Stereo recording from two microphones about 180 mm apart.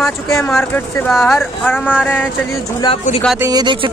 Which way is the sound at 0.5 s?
Centre (ahead or behind).